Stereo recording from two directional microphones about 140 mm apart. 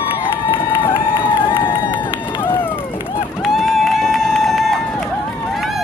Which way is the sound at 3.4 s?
Centre (ahead or behind).